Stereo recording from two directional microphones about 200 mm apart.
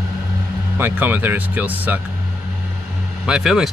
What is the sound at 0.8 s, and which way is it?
Speech, 10° right (ahead or behind).